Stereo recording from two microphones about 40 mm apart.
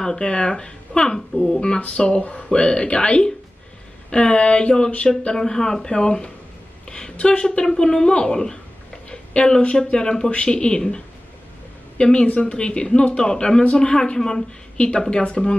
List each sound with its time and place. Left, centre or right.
0.0 s speech: centre
12.0 s speech: left